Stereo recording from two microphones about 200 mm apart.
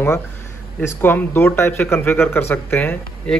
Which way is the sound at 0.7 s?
10° left (ahead or behind).